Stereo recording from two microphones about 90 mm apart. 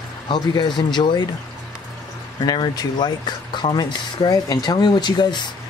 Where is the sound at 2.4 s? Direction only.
50° left (ahead or behind).